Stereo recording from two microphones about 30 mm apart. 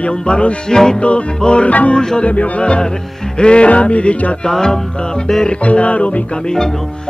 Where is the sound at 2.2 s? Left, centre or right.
Left.